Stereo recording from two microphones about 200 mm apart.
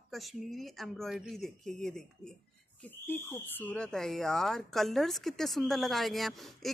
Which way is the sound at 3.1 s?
10° left (ahead or behind).